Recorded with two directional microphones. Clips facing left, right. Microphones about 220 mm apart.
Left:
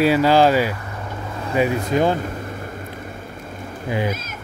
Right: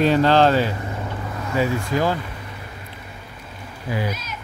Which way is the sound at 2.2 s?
50° left (ahead or behind).